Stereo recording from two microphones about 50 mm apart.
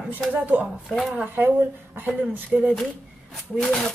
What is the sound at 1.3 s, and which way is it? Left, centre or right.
Speech, right.